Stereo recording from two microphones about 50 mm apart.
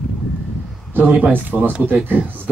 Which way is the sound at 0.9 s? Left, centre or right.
Right.